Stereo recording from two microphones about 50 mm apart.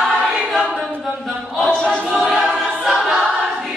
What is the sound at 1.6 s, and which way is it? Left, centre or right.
Choir, centre.